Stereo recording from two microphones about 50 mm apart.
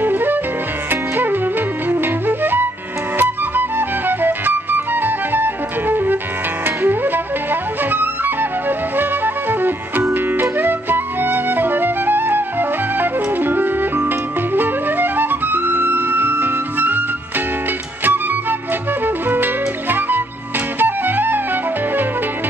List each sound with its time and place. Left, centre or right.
0.0 s music: right
7.9 s flute: right
19.0 s flute: right
20.8 s music: right